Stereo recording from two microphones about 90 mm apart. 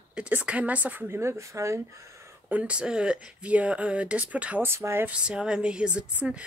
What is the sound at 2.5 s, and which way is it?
A woman's voice, 15° right (ahead or behind).